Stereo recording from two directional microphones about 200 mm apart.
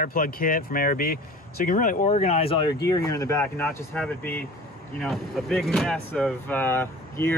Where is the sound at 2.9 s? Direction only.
15° left (ahead or behind).